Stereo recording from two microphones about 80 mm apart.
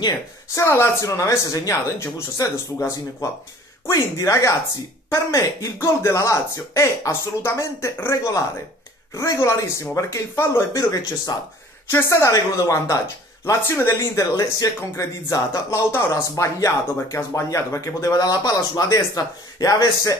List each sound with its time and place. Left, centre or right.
0.6 s speech: left
3.9 s speech: left
14.2 s speech: left
18.1 s speech: left